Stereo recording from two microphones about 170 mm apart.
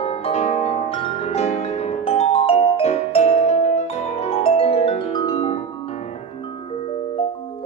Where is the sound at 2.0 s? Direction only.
35° left (ahead or behind).